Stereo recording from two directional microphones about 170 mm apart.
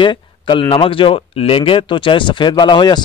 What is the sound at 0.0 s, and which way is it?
Speech, 30° left (ahead or behind).